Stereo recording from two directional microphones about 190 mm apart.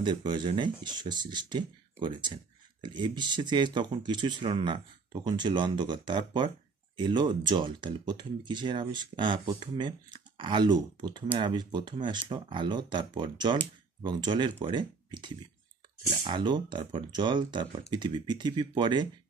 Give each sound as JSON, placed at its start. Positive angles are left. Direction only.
{"t": 0.0, "sound": "speech", "side_deg": -25}